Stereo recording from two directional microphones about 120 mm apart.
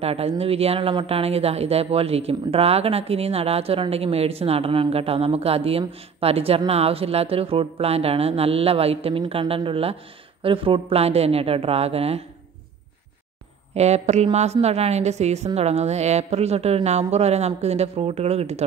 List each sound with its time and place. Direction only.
0.0 s a woman's voice: 55° right (ahead or behind)
13.7 s a woman's voice: 65° right (ahead or behind)